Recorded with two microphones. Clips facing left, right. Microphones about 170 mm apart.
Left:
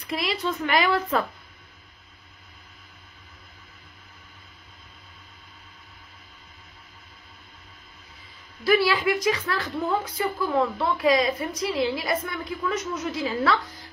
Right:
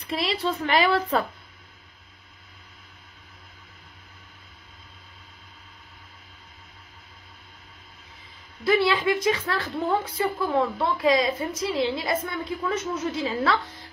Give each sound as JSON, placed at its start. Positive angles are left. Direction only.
{"t": 0.0, "sound": "a woman's voice", "side_deg": -30}
{"t": 8.6, "sound": "a woman's voice", "side_deg": -25}